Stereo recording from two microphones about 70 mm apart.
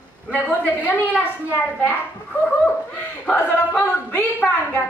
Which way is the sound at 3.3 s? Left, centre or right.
Left.